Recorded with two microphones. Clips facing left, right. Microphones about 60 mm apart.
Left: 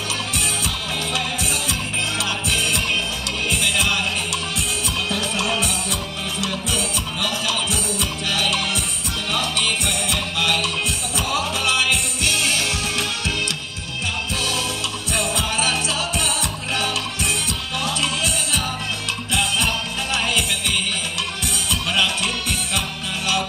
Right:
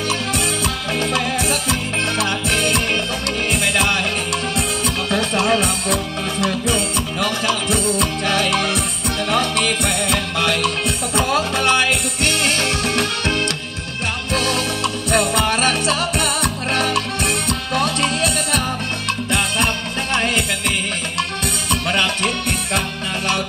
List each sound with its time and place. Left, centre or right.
1.1 s music: right